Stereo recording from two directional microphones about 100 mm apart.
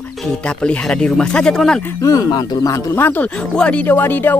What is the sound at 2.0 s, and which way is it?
Speech, 35° left (ahead or behind).